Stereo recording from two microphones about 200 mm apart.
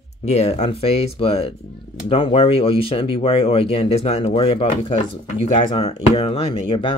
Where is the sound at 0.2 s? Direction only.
35° left (ahead or behind).